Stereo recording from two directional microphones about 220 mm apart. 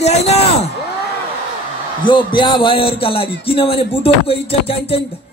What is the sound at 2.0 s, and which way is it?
A man's voice, 20° left (ahead or behind).